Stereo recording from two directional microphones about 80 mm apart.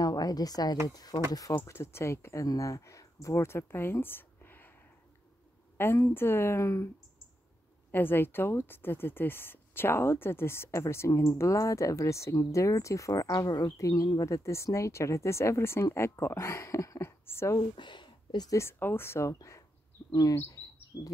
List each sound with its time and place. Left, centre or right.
0.0 s speech: left
1.5 s speech: left
2.4 s speech: left
5.9 s speech: left
7.9 s speech: left
17.7 s a sound: left
18.5 s speech: left
20.1 s speech: left